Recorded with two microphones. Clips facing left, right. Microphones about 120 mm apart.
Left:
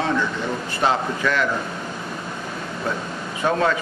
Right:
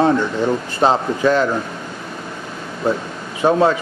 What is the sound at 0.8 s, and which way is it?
Speech, 30° right (ahead or behind).